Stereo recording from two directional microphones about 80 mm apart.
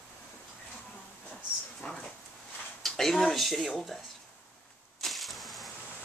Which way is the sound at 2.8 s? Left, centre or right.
Centre.